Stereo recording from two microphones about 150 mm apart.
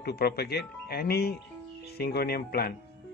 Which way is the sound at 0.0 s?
90° left.